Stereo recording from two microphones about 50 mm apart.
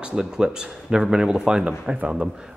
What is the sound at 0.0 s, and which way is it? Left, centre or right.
Speech, centre.